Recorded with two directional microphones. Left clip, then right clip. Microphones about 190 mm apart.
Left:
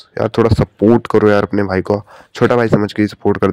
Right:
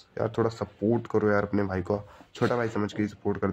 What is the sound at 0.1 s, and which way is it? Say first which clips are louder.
Speech: left 13 dB; 35° left (ahead or behind).